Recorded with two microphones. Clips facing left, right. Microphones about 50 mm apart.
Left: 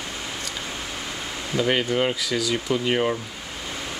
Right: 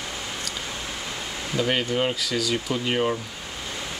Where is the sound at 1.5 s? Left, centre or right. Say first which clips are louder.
Left 2 dB; centre.